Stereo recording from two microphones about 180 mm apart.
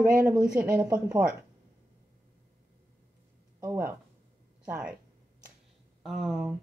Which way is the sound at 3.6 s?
15° right (ahead or behind).